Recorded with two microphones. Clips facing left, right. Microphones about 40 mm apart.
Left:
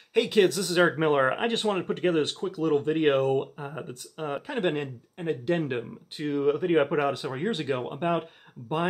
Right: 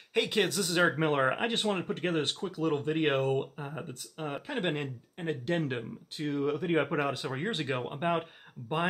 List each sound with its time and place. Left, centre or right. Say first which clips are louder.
0.1 s speech: left 6 dB; centre
0.7 s speech: left 3 dB; centre
6.1 s speech: left 5 dB; left; by 8.8 s centre